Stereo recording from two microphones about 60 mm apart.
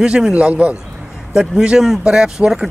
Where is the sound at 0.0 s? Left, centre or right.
Centre.